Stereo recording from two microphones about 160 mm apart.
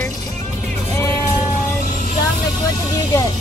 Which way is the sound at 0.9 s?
20° left (ahead or behind).